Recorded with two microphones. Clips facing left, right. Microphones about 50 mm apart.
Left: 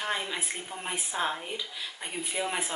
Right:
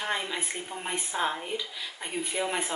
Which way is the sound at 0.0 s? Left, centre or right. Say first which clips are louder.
Right 1 dB; centre.